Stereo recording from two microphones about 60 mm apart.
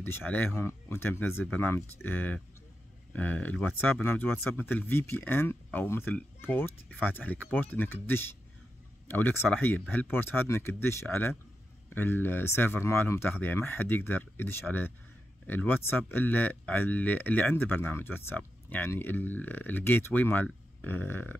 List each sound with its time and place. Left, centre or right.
0.0 s speech: left
11.9 s speech: left